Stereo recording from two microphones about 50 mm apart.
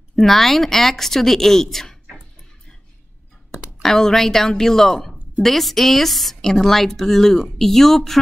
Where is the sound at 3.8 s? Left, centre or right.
Centre.